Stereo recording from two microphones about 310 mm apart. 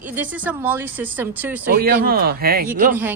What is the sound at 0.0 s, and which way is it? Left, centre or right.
Speech, centre.